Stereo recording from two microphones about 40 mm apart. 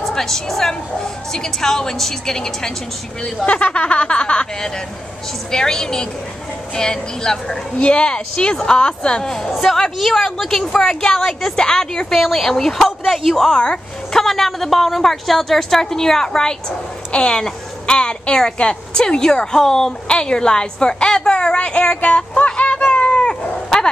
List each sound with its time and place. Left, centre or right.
0.0 s a woman's voice: centre
3.4 s speech: left
4.6 s a woman's voice: centre
7.7 s a woman's voice: left
17.1 s a woman's voice: left
22.9 s dog: left